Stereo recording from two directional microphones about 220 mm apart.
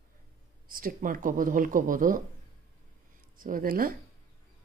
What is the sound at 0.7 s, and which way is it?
Speech, 40° right (ahead or behind).